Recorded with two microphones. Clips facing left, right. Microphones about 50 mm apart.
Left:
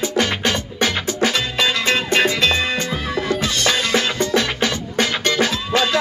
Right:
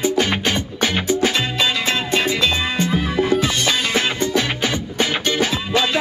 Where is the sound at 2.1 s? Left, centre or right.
Left.